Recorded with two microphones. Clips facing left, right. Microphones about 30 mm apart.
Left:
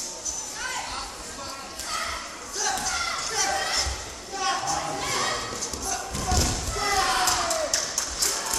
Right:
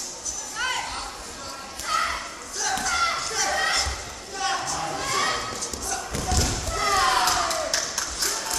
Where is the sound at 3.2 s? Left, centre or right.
Centre.